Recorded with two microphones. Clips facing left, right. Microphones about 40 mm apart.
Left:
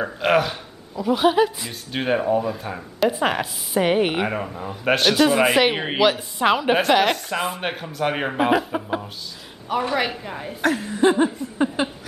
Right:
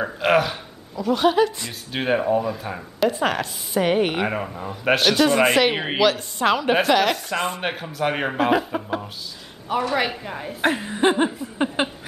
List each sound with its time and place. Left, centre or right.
0.0 s speech: centre
0.9 s speech: centre
4.3 s a woman's voice: centre
10.6 s speech: right